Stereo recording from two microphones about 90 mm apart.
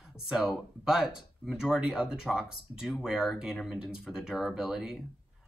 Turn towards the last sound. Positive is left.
turn(degrees=-5)  # may be behind; listen again after turning